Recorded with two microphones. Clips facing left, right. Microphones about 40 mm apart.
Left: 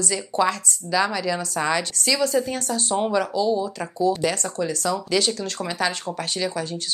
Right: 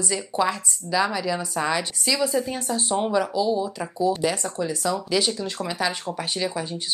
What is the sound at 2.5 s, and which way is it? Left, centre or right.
Speech, centre.